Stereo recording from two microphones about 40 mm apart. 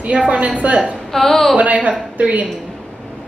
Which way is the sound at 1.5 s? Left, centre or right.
Right.